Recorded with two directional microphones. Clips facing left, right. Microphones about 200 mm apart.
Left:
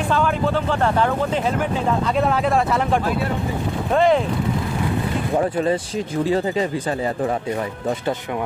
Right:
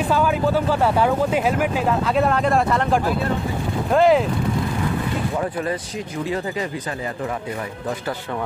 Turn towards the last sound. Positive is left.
turn(degrees=30)  # may be behind; listen again after turning